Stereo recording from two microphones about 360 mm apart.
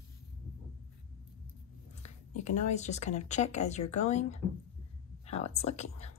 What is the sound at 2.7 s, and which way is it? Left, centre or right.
Speech, centre.